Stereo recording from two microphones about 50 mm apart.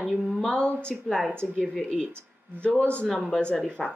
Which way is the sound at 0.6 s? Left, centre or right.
Centre.